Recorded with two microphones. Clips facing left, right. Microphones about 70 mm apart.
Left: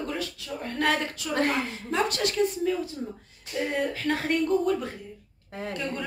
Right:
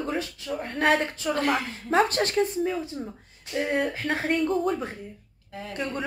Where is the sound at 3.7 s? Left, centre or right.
Centre.